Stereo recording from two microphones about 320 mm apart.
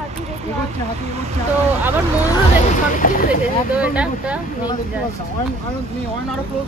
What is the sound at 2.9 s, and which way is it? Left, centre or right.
Speech, left.